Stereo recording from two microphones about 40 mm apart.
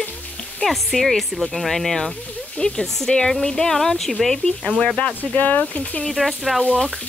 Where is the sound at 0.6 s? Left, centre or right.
Centre.